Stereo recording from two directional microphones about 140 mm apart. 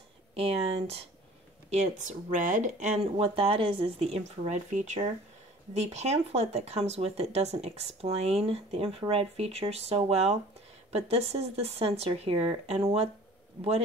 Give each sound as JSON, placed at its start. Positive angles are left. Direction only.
{"t": 0.3, "sound": "speech", "side_deg": -45}
{"t": 1.7, "sound": "speech", "side_deg": -60}